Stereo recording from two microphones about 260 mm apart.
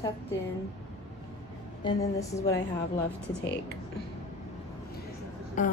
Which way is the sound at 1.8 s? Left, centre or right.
Centre.